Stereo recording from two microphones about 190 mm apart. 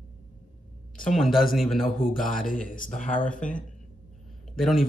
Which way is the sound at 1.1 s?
Centre (ahead or behind).